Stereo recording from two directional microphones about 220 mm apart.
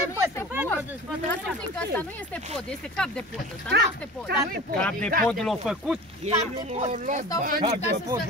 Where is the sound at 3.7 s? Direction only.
50° right (ahead or behind).